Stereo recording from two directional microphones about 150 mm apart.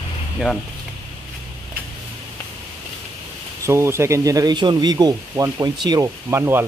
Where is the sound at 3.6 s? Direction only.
20° right (ahead or behind).